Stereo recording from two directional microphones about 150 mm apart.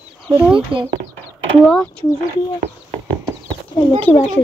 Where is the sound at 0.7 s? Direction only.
35° right (ahead or behind).